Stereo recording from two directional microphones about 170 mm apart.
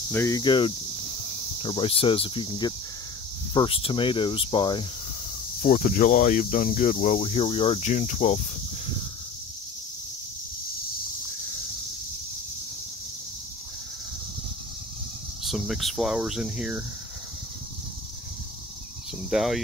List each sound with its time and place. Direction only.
0.1 s speech: 15° left (ahead or behind)
0.4 s speech: 30° left (ahead or behind)
5.6 s speech: 55° left (ahead or behind)
15.4 s speech: centre (ahead or behind)
19.3 s speech: centre (ahead or behind)